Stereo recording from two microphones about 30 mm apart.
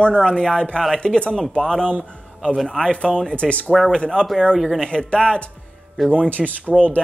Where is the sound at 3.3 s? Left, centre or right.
Left.